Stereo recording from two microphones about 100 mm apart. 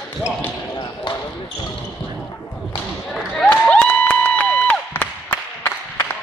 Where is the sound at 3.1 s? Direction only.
5° left (ahead or behind).